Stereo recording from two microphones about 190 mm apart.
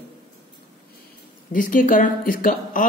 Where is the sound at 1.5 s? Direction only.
45° left (ahead or behind).